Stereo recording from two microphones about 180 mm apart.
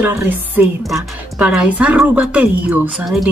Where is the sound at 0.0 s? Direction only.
10° right (ahead or behind).